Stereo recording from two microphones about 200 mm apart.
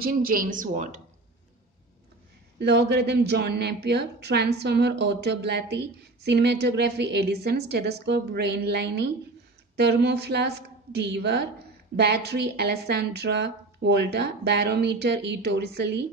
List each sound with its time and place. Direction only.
0.0 s speech: 45° right (ahead or behind)
2.6 s a woman's voice: 55° right (ahead or behind)